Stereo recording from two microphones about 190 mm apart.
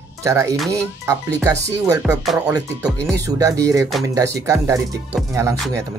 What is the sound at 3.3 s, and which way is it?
Speech, 15° right (ahead or behind).